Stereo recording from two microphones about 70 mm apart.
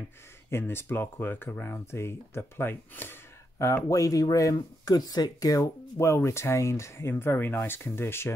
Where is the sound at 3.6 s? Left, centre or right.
Left.